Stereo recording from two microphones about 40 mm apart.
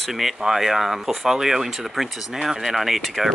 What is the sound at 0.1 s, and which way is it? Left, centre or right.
Speech, centre.